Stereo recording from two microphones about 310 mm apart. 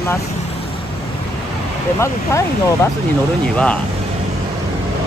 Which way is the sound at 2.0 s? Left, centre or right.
Centre.